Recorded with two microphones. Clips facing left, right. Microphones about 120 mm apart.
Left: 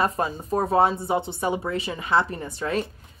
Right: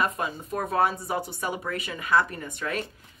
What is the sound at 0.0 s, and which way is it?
Speech, 35° left (ahead or behind).